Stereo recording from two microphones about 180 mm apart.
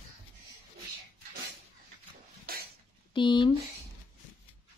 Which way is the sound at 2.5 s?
55° right (ahead or behind).